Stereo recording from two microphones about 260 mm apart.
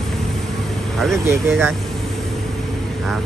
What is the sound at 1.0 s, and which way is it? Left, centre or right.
Speech, centre.